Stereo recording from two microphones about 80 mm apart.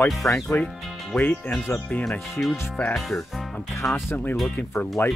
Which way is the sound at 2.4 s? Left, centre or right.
Centre.